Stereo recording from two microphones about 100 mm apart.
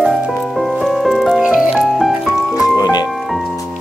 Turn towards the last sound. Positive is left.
turn(degrees=40)  # may be behind; listen again after turning